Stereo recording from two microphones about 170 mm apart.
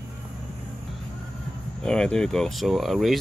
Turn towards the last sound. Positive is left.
turn(degrees=0)  # may be behind; listen again after turning